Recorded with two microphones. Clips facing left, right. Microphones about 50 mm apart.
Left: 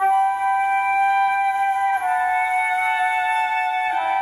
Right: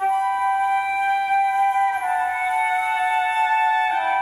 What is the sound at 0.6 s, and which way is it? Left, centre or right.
Music, left.